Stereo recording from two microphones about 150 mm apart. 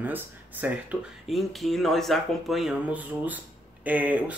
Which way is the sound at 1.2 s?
Centre (ahead or behind).